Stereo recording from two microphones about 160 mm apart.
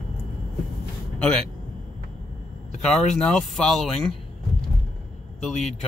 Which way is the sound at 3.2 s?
5° left (ahead or behind).